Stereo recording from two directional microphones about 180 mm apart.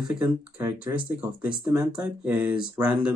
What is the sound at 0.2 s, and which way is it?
Speech, 10° right (ahead or behind).